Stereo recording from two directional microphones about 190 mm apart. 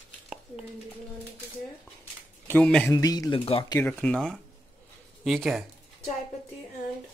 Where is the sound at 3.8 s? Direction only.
5° left (ahead or behind).